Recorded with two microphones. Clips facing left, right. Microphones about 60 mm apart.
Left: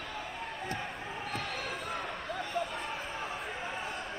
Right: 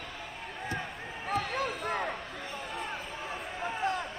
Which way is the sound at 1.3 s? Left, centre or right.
Right.